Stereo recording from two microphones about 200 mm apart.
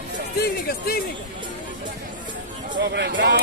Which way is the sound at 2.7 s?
55° right (ahead or behind).